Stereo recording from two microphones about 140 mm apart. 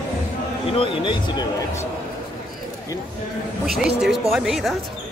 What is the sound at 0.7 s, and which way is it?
Speech, 40° left (ahead or behind).